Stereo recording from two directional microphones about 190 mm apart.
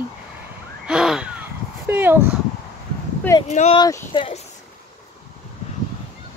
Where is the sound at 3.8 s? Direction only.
25° left (ahead or behind).